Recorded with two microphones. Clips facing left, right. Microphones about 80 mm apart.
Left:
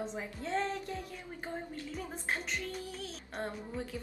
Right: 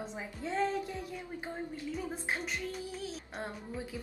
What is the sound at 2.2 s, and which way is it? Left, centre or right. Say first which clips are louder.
A woman's voice: even; centre.